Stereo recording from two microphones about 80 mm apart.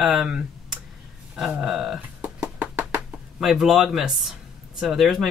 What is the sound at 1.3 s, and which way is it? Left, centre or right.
Speech, centre.